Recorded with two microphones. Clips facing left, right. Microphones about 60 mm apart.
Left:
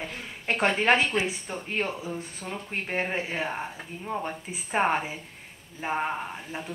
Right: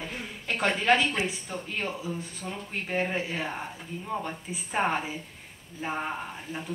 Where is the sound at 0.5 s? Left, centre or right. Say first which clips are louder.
Left 2 dB; left.